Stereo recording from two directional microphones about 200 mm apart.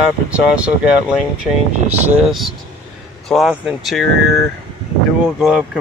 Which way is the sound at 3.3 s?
Centre (ahead or behind).